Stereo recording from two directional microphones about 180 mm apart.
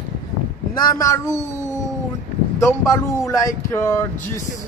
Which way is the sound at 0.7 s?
20° left (ahead or behind).